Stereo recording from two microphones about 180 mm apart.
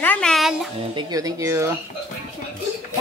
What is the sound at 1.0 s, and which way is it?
Speech, 20° right (ahead or behind).